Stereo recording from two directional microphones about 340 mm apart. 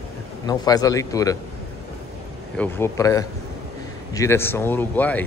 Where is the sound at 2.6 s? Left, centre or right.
Centre.